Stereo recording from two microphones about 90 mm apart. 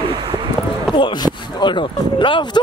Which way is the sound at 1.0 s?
55° left (ahead or behind).